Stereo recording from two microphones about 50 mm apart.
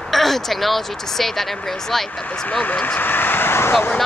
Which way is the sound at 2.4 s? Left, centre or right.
Left.